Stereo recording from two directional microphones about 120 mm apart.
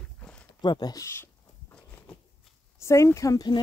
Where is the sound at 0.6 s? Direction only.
35° left (ahead or behind).